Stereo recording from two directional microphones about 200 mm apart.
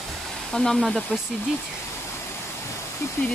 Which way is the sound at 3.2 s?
10° left (ahead or behind).